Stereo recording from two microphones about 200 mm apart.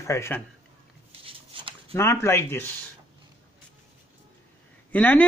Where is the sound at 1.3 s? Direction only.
25° right (ahead or behind).